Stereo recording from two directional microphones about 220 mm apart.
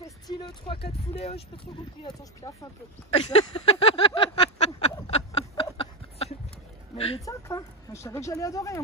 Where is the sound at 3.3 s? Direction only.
25° left (ahead or behind).